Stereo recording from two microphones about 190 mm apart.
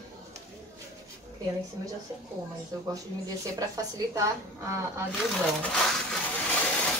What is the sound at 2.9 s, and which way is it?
Speech, 20° right (ahead or behind).